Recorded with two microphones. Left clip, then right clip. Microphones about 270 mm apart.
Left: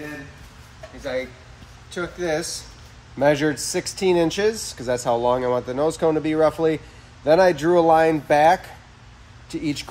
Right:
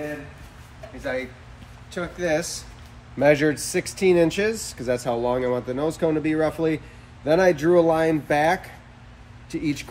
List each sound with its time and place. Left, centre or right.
1.9 s speech: centre